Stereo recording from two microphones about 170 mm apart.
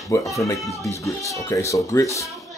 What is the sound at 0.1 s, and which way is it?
Speech, 20° left (ahead or behind).